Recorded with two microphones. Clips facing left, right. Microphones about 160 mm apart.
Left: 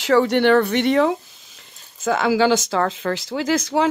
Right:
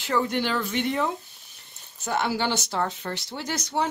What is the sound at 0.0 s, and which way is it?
Speech, 85° left.